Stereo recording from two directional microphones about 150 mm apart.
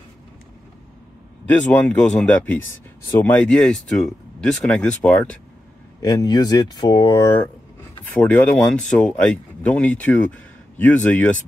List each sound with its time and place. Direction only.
1.5 s speech: 10° left (ahead or behind)
6.0 s speech: 25° left (ahead or behind)
8.1 s speech: 10° left (ahead or behind)